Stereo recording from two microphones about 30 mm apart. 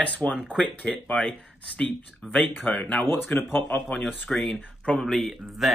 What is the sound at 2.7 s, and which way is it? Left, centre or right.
Speech, left.